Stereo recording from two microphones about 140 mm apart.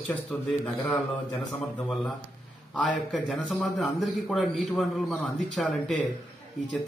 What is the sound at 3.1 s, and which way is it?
A man's voice, centre (ahead or behind).